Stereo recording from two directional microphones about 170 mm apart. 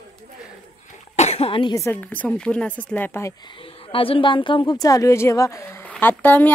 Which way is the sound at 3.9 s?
30° left (ahead or behind).